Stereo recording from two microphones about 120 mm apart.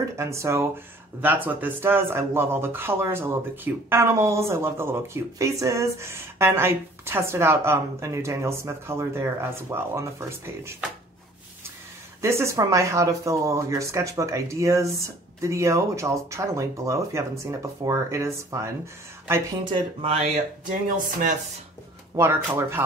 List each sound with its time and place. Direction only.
0.2 s speech: 25° right (ahead or behind)
12.2 s speech: 25° right (ahead or behind)
19.6 s speech: 45° right (ahead or behind)
22.1 s speech: 20° right (ahead or behind)